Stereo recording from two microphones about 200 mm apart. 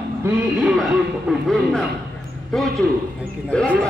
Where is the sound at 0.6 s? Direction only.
5° right (ahead or behind).